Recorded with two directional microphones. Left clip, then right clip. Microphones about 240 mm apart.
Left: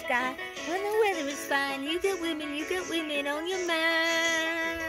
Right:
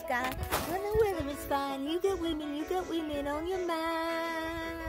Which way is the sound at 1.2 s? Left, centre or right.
Centre.